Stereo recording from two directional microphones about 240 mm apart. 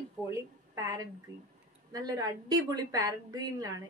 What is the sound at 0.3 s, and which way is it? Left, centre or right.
A woman's voice, centre.